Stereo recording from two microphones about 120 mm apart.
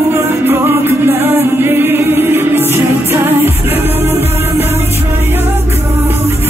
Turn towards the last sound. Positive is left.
turn(degrees=-20)  # may be behind; listen again after turning